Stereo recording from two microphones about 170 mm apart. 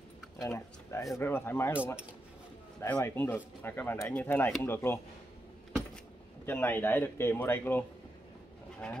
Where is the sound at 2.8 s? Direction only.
15° left (ahead or behind).